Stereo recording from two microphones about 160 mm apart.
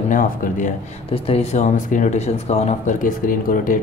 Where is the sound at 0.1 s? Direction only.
55° left (ahead or behind).